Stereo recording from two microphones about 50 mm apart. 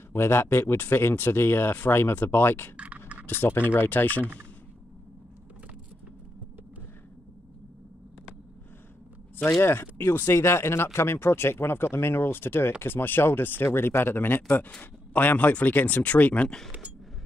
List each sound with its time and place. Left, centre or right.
0.1 s speech: left
2.8 s scratch: right
3.3 s speech: left
9.6 s speech: left
16.4 s speech: centre